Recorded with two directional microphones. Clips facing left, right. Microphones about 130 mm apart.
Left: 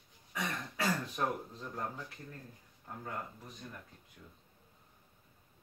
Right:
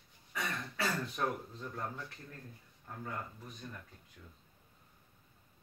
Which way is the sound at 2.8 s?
10° left (ahead or behind).